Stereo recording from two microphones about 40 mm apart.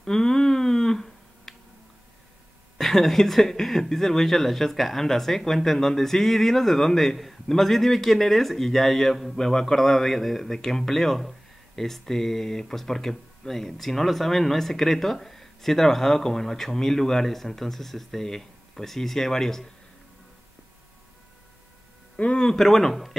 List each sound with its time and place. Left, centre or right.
0.0 s a sound: centre
2.8 s a man's voice: centre
9.4 s a man's voice: centre
22.1 s speech: left
22.5 s a man's voice: centre